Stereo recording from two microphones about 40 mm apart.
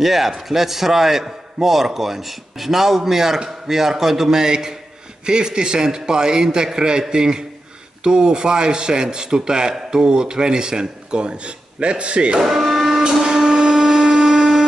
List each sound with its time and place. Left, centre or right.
0.0 s a man's voice: centre; by 12.4 s right
12.4 s printer: centre
13.2 s a sound: centre